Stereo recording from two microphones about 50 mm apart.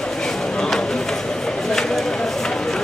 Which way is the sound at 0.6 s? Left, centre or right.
Centre.